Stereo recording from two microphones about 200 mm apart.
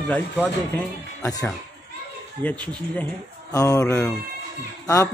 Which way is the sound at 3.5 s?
15° left (ahead or behind).